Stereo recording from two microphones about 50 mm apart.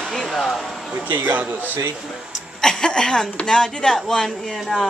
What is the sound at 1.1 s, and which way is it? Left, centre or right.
Speech, right.